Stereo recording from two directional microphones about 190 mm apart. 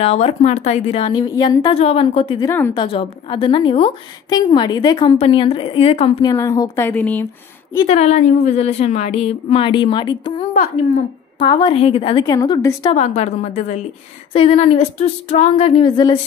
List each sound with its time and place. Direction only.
0.0 s a woman's voice: 30° left (ahead or behind)
6.3 s speech: 15° left (ahead or behind)
7.9 s a woman's voice: 35° left (ahead or behind)
11.6 s a woman's voice: 30° left (ahead or behind)
12.9 s a woman's voice: 35° left (ahead or behind)